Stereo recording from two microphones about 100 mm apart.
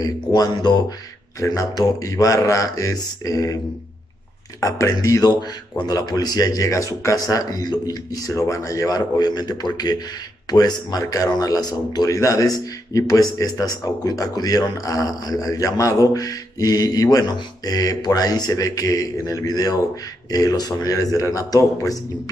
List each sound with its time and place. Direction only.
0.0 s speech: 45° left (ahead or behind)
4.6 s speech: 30° left (ahead or behind)